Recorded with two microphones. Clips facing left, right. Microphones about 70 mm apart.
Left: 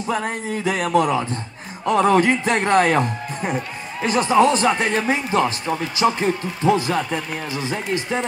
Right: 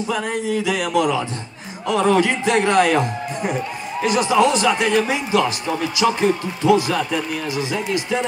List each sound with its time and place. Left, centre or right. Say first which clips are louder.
0.1 s speech: right 1 dB; left